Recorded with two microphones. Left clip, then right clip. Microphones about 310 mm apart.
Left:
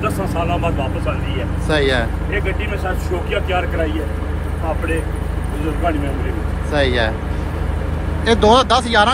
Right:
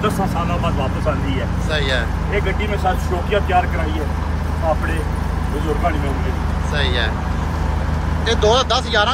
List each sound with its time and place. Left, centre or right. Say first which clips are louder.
1.7 s speech: left 4 dB; centre
6.7 s speech: left 4 dB; centre
8.3 s speech: left 4 dB; centre